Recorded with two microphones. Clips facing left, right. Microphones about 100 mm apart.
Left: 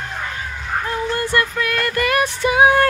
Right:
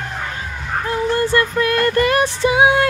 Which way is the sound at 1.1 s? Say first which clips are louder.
Right 4 dB; 30° right (ahead or behind).